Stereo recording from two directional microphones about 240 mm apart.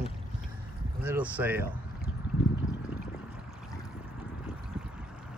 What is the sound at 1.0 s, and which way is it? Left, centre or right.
Speech, centre.